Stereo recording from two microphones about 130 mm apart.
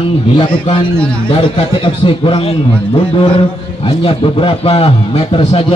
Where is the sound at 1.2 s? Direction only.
45° left (ahead or behind).